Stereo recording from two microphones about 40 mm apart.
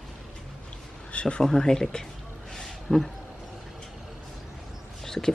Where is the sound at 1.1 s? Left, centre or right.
Left.